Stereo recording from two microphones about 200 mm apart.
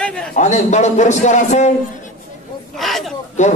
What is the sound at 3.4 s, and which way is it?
Speech, 35° left (ahead or behind).